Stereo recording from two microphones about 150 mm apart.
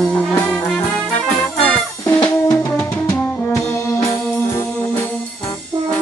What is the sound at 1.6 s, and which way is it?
Music, 10° left (ahead or behind).